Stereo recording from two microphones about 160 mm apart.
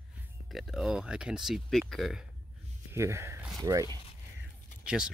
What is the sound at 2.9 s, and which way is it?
Speech, 15° right (ahead or behind).